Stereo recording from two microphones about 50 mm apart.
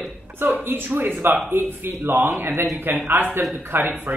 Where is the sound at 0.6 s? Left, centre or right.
Right.